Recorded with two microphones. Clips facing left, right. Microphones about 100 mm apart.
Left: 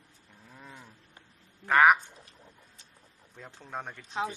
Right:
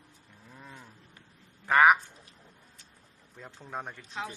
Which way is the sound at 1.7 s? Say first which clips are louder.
Even; centre (ahead or behind).